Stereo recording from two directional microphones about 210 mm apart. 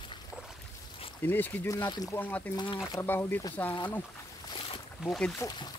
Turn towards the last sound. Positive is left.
turn(degrees=15)  # may be behind; listen again after turning